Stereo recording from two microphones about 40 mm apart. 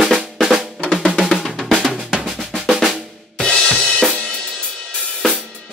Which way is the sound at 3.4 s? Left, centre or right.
Centre.